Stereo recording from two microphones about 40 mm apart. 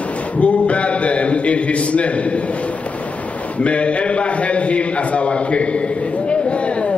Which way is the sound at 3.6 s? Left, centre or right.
Left.